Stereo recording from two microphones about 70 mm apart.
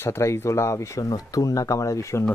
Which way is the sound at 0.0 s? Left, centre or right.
Left.